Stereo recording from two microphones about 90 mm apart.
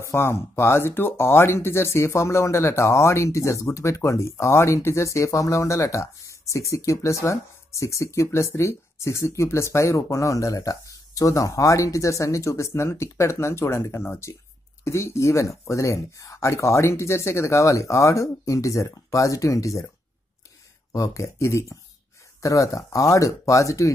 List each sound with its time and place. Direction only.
0.0 s speech: 30° left (ahead or behind)
20.9 s speech: 35° left (ahead or behind)